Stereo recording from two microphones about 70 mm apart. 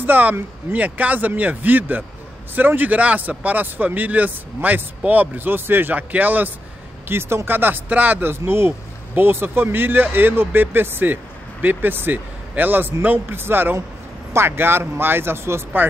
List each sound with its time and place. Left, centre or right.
0.0 s speech: right
7.1 s speech: right